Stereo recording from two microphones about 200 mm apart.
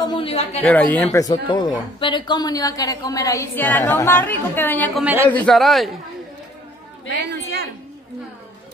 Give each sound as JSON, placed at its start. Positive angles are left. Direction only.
{"t": 0.0, "sound": "a man's voice", "side_deg": 25}
{"t": 0.6, "sound": "a woman's voice", "side_deg": 10}
{"t": 5.0, "sound": "speech", "side_deg": -10}
{"t": 5.3, "sound": "a man's voice", "side_deg": 5}